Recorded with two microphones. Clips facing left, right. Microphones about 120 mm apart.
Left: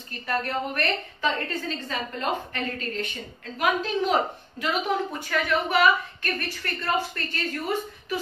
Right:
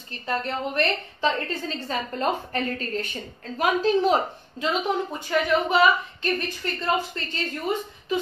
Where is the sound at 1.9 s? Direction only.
35° right (ahead or behind).